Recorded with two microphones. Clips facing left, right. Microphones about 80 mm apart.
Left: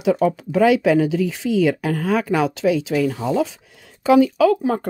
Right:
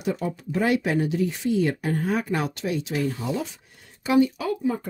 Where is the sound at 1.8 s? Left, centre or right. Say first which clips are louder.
Left 5 dB; left.